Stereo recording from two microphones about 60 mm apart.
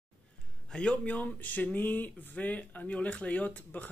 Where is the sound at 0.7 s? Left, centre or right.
Centre.